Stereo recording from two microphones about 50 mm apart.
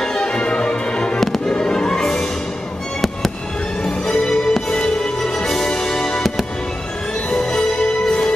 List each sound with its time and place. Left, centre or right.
0.0 s music: centre
1.5 s fireworks: centre
3.8 s music: centre